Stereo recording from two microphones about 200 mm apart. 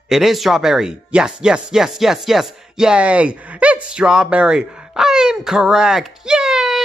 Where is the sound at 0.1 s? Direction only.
Centre (ahead or behind).